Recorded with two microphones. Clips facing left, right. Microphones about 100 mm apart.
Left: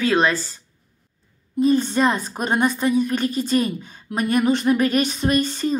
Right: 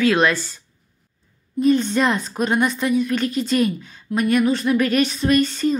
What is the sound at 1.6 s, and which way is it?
A woman's voice, 35° left (ahead or behind).